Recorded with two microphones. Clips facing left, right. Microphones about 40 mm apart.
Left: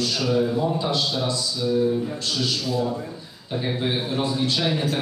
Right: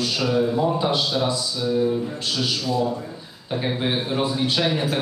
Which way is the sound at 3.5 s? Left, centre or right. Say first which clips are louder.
Right 1 dB; right.